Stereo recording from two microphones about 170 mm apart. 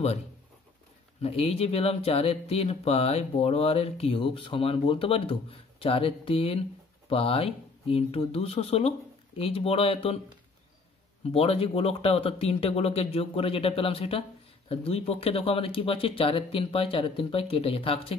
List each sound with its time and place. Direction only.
1.2 s speech: 35° left (ahead or behind)
11.3 s speech: 35° left (ahead or behind)